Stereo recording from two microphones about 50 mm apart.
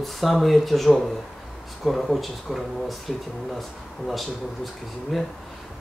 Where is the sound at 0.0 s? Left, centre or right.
Centre.